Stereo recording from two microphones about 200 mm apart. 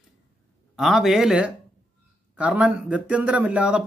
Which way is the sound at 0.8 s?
Centre (ahead or behind).